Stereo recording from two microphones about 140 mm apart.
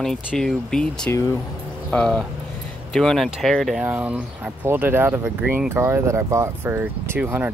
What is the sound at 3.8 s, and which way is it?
Speech, 10° right (ahead or behind).